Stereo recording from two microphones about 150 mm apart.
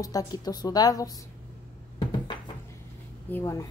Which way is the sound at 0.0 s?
25° left (ahead or behind).